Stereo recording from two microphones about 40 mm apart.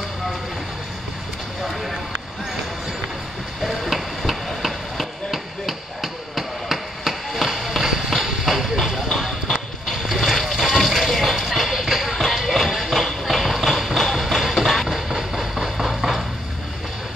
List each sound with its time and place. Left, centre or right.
1.6 s a sound: centre
3.6 s vehicle: centre
4.6 s chop: centre
8.1 s clip-clop: centre
10.4 s water: centre
11.0 s music: centre
12.5 s train: centre